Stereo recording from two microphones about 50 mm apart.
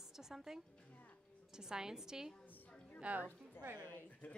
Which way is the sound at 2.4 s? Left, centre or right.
Left.